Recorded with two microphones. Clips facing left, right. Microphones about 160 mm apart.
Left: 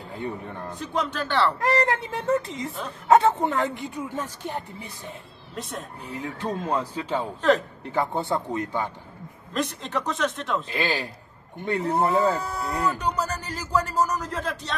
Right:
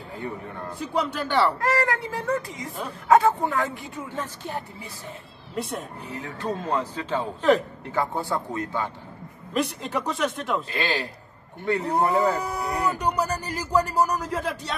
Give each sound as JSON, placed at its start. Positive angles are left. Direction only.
{"t": 0.7, "sound": "speech", "side_deg": -10}
{"t": 1.6, "sound": "speech", "side_deg": 20}
{"t": 5.5, "sound": "speech", "side_deg": -10}
{"t": 6.1, "sound": "speech", "side_deg": 15}
{"t": 9.5, "sound": "speech", "side_deg": -10}
{"t": 10.7, "sound": "speech", "side_deg": 10}
{"t": 11.7, "sound": "speech", "side_deg": -15}